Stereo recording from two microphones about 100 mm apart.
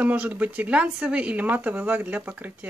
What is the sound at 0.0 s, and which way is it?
Speech, 15° right (ahead or behind).